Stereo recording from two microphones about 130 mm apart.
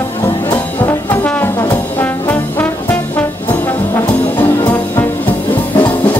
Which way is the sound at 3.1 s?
15° left (ahead or behind).